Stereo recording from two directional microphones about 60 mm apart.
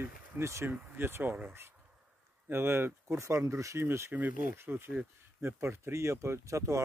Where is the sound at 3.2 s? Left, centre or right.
Right.